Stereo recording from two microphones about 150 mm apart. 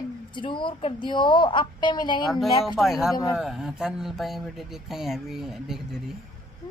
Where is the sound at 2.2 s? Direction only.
Centre (ahead or behind).